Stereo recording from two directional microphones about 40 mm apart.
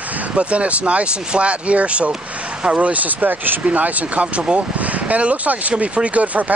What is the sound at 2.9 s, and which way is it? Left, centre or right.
Speech, right.